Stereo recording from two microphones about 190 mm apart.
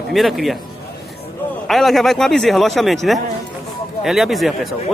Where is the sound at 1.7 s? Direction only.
Centre (ahead or behind).